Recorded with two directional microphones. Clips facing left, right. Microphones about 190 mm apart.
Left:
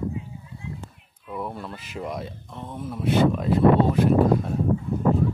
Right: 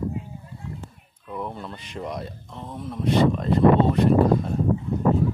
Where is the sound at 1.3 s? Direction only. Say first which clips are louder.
Even; 5° left (ahead or behind).